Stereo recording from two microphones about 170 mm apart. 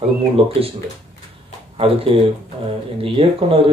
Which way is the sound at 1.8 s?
35° right (ahead or behind).